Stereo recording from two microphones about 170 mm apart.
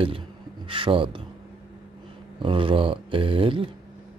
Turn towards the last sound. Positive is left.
turn(degrees=-30)  # may be behind; listen again after turning